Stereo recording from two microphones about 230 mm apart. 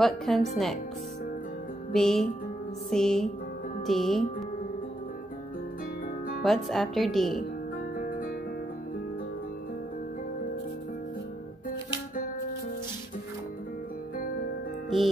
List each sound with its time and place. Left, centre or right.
0.0 s speech: centre
1.9 s speech: centre
6.4 s speech: centre
8.0 s music: left
14.9 s speech: centre